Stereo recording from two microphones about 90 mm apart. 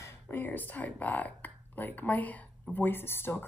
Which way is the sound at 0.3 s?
20° left (ahead or behind).